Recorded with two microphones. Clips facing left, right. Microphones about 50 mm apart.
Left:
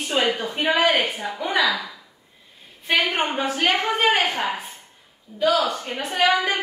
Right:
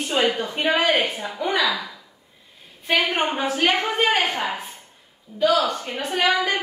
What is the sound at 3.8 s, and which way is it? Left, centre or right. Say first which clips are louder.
Speech: left 1 dB; left.